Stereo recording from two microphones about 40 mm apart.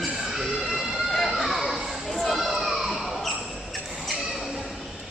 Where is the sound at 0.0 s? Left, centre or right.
Centre.